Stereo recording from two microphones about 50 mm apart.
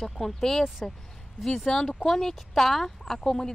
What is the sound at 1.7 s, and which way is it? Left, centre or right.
Speech, centre.